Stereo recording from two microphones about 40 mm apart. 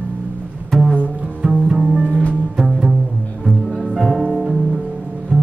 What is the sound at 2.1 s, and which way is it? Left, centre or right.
Music, left.